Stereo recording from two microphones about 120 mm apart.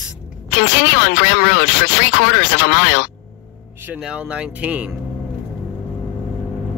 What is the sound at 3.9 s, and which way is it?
Speech, 5° right (ahead or behind).